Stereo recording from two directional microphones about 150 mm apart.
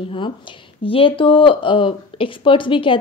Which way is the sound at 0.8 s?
35° left (ahead or behind).